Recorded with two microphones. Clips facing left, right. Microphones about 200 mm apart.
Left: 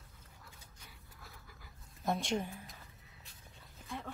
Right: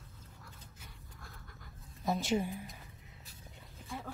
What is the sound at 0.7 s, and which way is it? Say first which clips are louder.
Pant: right 3 dB; 5° left (ahead or behind).